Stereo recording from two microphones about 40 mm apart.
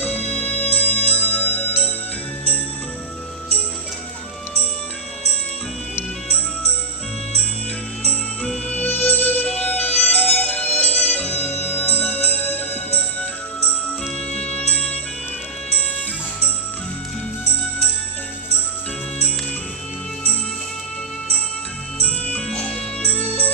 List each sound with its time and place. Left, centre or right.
0.0 s music: left
0.6 s music: left
8.6 s music: left
10.5 s music: left
22.6 s music: left
23.0 s music: left